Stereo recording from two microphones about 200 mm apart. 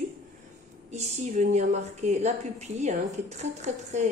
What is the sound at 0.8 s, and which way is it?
A woman's voice, 35° right (ahead or behind).